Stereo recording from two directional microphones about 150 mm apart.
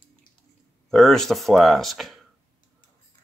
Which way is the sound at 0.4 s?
5° left (ahead or behind).